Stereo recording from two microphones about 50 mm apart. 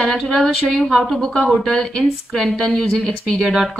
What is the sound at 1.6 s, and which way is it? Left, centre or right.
A woman's voice, centre.